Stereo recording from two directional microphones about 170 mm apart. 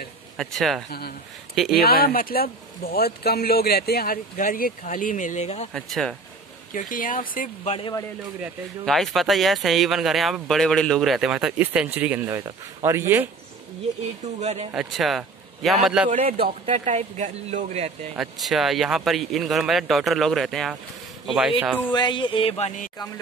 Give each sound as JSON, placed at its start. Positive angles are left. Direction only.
{"t": 0.4, "sound": "speech", "side_deg": 0}
{"t": 1.8, "sound": "speech", "side_deg": 60}
{"t": 5.7, "sound": "speech", "side_deg": 0}
{"t": 6.7, "sound": "speech", "side_deg": 50}
{"t": 8.8, "sound": "speech", "side_deg": 0}
{"t": 14.2, "sound": "speech", "side_deg": -40}
{"t": 14.7, "sound": "a man's voice", "side_deg": 0}
{"t": 16.1, "sound": "speech", "side_deg": -45}
{"t": 18.1, "sound": "speech", "side_deg": 0}
{"t": 21.9, "sound": "speech", "side_deg": 25}